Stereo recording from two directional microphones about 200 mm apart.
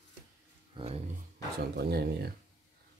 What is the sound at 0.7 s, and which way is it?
Speech, 25° right (ahead or behind).